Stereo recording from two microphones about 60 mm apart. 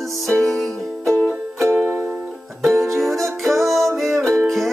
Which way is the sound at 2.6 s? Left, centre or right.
Centre.